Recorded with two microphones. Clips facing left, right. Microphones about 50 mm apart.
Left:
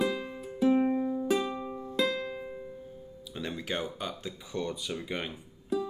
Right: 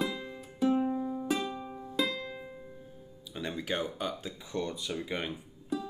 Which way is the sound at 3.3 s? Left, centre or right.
Centre.